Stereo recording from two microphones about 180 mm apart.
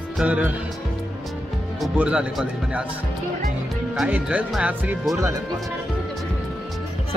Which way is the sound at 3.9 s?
5° right (ahead or behind).